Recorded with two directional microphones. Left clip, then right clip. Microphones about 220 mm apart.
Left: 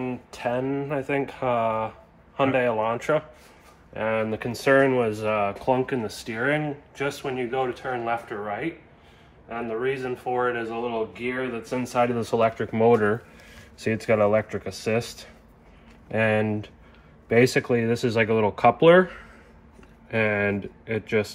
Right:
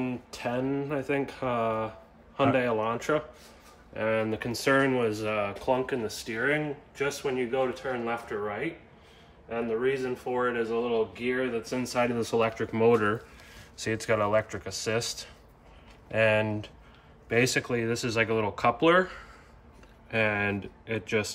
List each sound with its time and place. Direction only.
0.0 s speech: 10° right (ahead or behind); by 5.5 s 5° left (ahead or behind)
5.7 s speech: 20° left (ahead or behind); by 21.3 s 5° right (ahead or behind)